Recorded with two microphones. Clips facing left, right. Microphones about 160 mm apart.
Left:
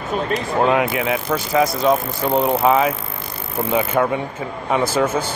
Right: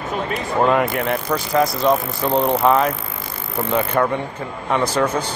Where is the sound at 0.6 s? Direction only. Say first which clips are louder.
Right 1 dB; 5° left (ahead or behind).